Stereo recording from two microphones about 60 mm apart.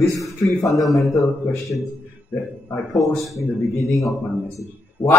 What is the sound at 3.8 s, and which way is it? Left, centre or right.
A man's voice, left.